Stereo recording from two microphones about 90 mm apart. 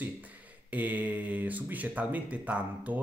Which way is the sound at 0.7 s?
20° right (ahead or behind).